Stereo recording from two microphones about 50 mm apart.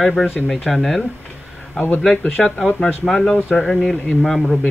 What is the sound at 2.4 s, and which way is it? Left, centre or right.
Speech, centre.